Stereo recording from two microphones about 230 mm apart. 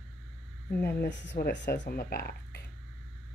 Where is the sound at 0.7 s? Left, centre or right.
Left.